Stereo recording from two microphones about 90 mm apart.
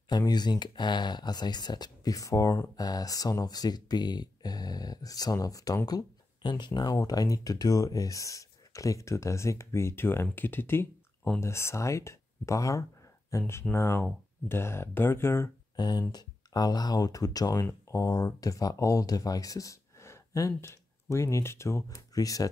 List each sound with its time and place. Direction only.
0.2 s speech: 50° left (ahead or behind); by 15.5 s 25° left (ahead or behind)
15.7 s speech: 50° left (ahead or behind)